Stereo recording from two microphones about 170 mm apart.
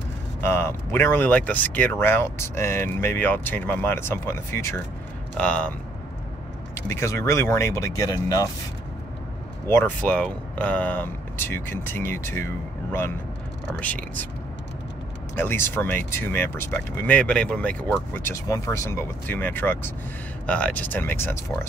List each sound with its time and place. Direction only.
0.4 s speech: 15° left (ahead or behind)
6.9 s speech: 15° left (ahead or behind)
9.7 s speech: 10° left (ahead or behind)
13.7 s speech: 10° left (ahead or behind)
15.3 s speech: 15° left (ahead or behind)